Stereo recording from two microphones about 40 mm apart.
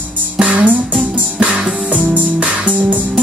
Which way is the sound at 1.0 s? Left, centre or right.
Right.